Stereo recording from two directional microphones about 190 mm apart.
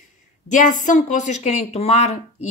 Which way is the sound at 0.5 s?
40° left (ahead or behind).